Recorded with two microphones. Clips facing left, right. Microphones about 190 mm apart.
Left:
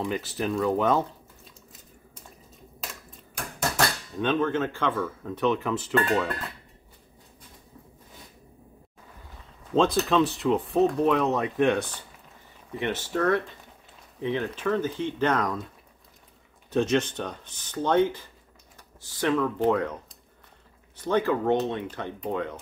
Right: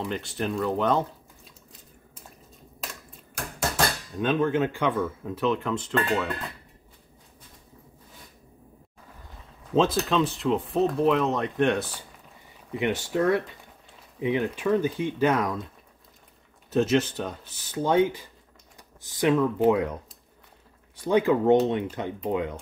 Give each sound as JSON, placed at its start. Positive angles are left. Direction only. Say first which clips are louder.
{"t": 0.0, "sound": "speech", "louder": "left 1 dB", "side_deg": 0}
{"t": 4.2, "sound": "speech", "louder": "right 1 dB", "side_deg": -5}
{"t": 5.3, "sound": "speech", "louder": "left 2 dB", "side_deg": 0}
{"t": 9.7, "sound": "speech", "louder": "even", "side_deg": 0}
{"t": 12.7, "sound": "speech", "louder": "right 3 dB", "side_deg": -15}
{"t": 16.7, "sound": "speech", "louder": "right 1 dB", "side_deg": -5}